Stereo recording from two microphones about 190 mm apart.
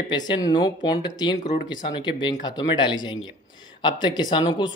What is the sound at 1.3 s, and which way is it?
Speech, 40° left (ahead or behind).